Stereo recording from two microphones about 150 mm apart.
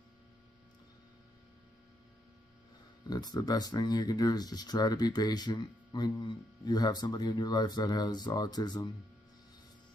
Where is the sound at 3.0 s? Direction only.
25° left (ahead or behind).